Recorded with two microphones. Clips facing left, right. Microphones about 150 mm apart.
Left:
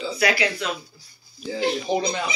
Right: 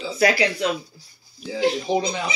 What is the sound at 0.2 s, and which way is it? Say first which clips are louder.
Speech: right 4 dB; 40° right (ahead or behind).